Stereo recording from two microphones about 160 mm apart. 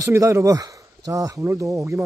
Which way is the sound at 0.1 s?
20° right (ahead or behind).